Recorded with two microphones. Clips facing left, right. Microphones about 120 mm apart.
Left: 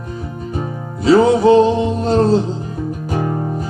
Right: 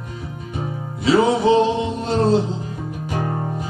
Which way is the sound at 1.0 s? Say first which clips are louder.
Left 5 dB; 40° left (ahead or behind).